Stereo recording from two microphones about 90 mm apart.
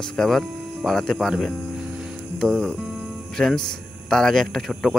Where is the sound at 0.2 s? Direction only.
5° left (ahead or behind).